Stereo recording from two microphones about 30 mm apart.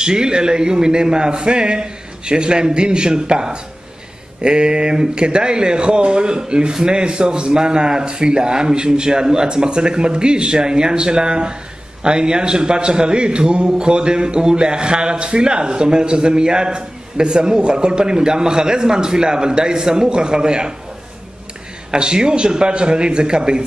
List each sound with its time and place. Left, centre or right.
0.0 s speech: right
21.9 s speech: right